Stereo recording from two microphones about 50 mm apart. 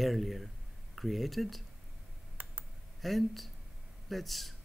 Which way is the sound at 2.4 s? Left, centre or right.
Right.